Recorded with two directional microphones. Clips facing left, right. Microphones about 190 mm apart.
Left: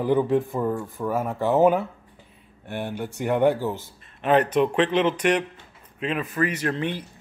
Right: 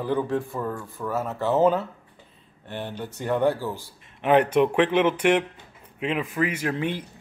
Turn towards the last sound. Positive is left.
turn(degrees=-10)  # may be behind; listen again after turning